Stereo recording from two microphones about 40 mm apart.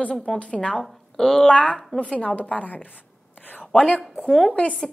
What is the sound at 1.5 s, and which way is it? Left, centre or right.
A woman's voice, left.